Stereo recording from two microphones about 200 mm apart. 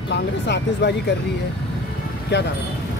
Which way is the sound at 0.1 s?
60° left (ahead or behind).